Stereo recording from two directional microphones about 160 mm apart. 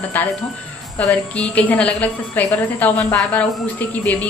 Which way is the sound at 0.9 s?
5° left (ahead or behind).